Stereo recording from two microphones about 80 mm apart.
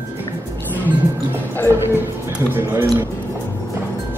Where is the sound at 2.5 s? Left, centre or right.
Right.